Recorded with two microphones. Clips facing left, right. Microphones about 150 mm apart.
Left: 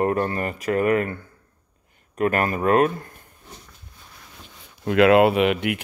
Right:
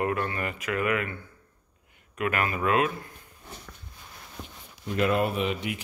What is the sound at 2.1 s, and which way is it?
Speech, 40° left (ahead or behind).